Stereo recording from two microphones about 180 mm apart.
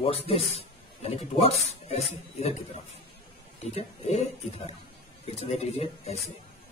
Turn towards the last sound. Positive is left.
turn(degrees=35)  # may be behind; listen again after turning